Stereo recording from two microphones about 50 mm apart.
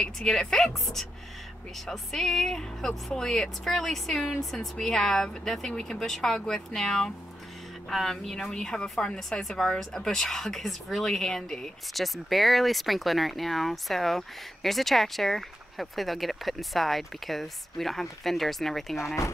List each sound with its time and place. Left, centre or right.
0.0 s speech: centre
1.9 s speech: centre